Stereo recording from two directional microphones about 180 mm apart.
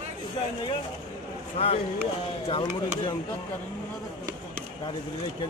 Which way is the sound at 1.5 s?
35° left (ahead or behind).